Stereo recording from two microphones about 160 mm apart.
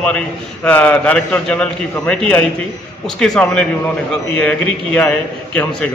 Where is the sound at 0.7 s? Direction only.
10° left (ahead or behind).